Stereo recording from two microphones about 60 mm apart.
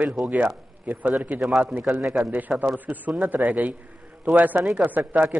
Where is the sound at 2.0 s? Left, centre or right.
Centre.